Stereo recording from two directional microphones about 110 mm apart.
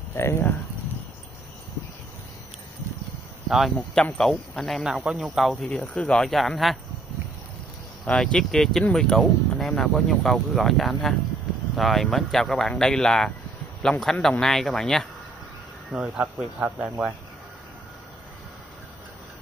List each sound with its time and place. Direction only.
0.1 s speech: 25° left (ahead or behind)
3.4 s speech: centre (ahead or behind)
8.0 s speech: 10° left (ahead or behind)
15.9 s speech: 5° right (ahead or behind)